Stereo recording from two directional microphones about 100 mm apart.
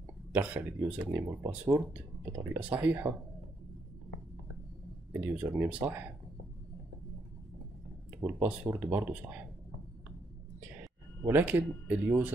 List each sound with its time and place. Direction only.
0.3 s speech: 20° right (ahead or behind)
5.2 s speech: 15° right (ahead or behind)
8.2 s speech: 20° right (ahead or behind)
11.2 s speech: 20° right (ahead or behind)